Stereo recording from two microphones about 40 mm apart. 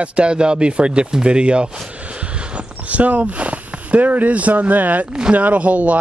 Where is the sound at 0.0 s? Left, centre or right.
Right.